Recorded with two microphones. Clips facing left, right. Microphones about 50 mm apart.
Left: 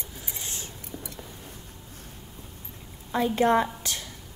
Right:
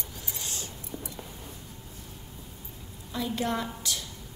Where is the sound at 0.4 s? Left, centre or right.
Left.